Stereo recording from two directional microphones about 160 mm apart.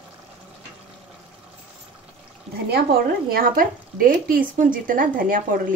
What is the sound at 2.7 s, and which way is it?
Speech, 70° right (ahead or behind).